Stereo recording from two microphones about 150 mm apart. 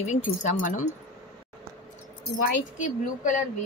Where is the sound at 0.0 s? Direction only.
50° left (ahead or behind).